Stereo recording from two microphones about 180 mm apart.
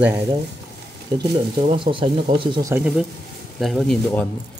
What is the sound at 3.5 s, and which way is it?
Speech, centre (ahead or behind).